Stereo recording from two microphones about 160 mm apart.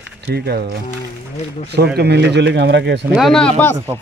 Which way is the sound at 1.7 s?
90° right.